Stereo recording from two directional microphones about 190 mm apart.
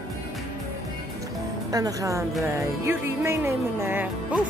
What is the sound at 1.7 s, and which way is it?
Speech, 20° right (ahead or behind).